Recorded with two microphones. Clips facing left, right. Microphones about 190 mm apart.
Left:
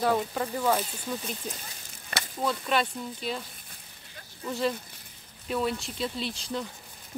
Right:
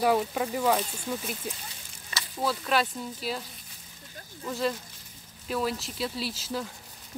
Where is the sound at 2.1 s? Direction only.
60° left (ahead or behind).